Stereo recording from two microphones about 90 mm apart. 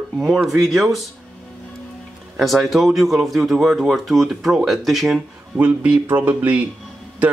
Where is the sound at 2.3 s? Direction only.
Centre (ahead or behind).